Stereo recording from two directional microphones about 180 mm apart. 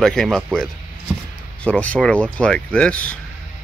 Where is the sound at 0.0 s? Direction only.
Centre (ahead or behind).